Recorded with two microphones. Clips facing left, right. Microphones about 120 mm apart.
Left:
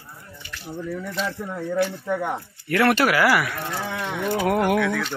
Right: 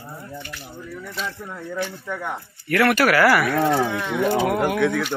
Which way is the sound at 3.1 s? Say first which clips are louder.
Right 3 dB; 15° left (ahead or behind).